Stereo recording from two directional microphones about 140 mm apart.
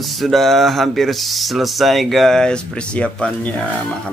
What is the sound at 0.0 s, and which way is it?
Speech, centre (ahead or behind).